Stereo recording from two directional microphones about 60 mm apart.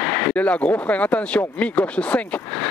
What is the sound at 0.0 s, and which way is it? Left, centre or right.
Speech, left.